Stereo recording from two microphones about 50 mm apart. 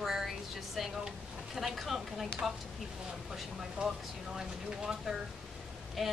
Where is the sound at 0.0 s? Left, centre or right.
Centre.